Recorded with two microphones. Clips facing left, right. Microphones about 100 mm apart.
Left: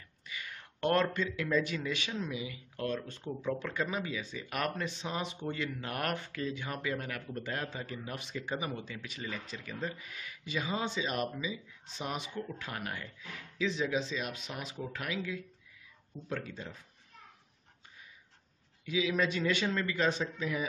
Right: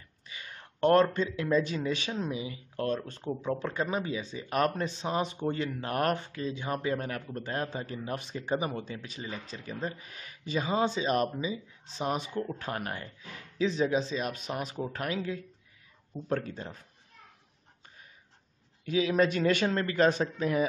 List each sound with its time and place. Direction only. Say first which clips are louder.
0.3 s a sound: left 1 dB; 30° right (ahead or behind)
1.1 s speech: right 4 dB; 30° right (ahead or behind)
18.9 s speech: right 5 dB; 45° right (ahead or behind)